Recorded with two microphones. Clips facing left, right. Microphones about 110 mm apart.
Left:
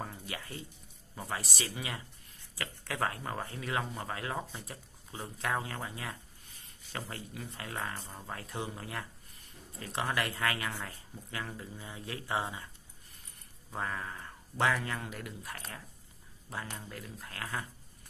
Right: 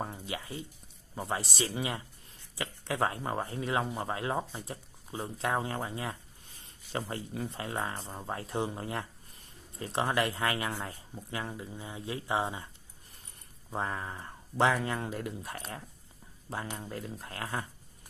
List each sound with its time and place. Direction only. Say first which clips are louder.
0.0 s a sound: right 4 dB; 20° right (ahead or behind)
1.1 s speech: right 4 dB; 25° right (ahead or behind)
13.7 s speech: right 3 dB; 25° right (ahead or behind)